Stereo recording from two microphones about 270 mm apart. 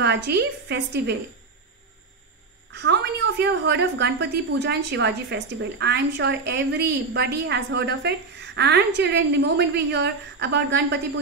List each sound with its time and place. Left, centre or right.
0.0 s a woman's voice: right
2.7 s a woman's voice: right